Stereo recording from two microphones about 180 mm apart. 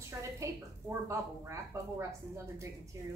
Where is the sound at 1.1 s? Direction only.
15° right (ahead or behind).